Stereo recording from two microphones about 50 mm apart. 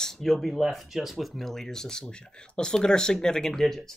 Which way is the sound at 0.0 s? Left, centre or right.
Centre.